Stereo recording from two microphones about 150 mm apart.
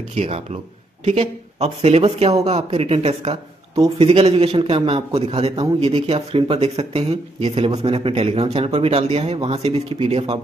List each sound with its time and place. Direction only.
0.1 s a man's voice: 45° right (ahead or behind)